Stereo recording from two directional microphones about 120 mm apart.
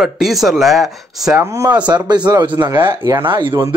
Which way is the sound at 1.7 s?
10° right (ahead or behind).